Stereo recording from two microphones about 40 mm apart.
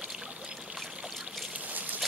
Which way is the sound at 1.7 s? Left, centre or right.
Right.